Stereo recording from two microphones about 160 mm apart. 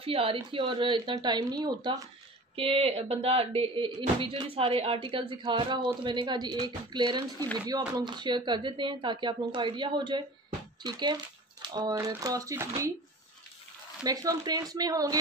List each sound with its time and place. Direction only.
0.0 s a woman's voice: 35° right (ahead or behind); by 12.9 s 20° right (ahead or behind)
14.0 s speech: 20° right (ahead or behind)